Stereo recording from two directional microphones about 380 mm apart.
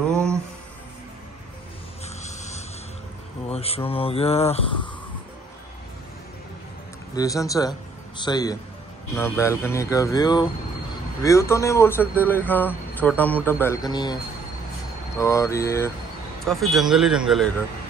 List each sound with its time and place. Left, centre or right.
0.0 s music: centre
2.2 s a sound: centre
3.4 s speech: centre
7.2 s speech: centre
15.1 s speech: centre